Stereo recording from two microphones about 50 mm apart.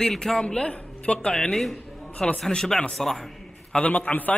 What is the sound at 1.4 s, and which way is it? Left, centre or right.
Speech, centre.